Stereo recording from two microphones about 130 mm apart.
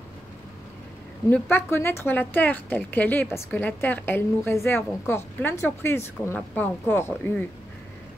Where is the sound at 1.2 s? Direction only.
15° left (ahead or behind).